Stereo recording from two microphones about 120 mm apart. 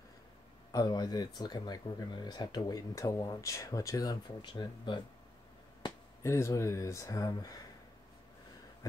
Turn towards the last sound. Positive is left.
turn(degrees=30)  # may be behind; listen again after turning